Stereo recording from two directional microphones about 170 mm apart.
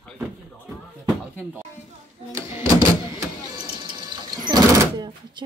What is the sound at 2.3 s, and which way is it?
Music, 15° right (ahead or behind).